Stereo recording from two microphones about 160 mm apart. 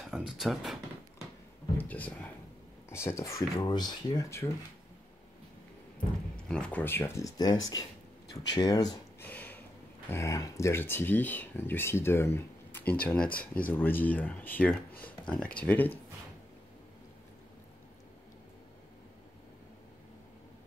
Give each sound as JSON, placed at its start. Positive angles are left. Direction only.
{"t": 0.0, "sound": "speech", "side_deg": -5}
{"t": 1.8, "sound": "speech", "side_deg": 10}
{"t": 6.3, "sound": "speech", "side_deg": 5}
{"t": 9.2, "sound": "a sound", "side_deg": 10}
{"t": 10.0, "sound": "speech", "side_deg": 20}
{"t": 13.3, "sound": "speech", "side_deg": 65}
{"t": 13.7, "sound": "speech", "side_deg": 10}